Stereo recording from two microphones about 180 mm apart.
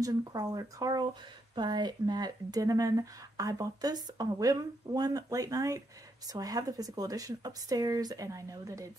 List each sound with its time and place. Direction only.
0.0 s speech: 20° right (ahead or behind)